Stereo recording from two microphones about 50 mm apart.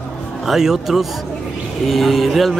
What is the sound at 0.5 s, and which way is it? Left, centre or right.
Speech, centre.